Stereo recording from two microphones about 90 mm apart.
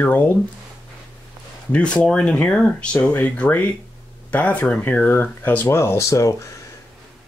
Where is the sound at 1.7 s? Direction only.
10° left (ahead or behind); by 6.3 s 35° left (ahead or behind).